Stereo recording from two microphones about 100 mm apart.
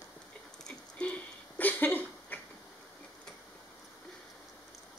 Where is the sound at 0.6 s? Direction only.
10° left (ahead or behind).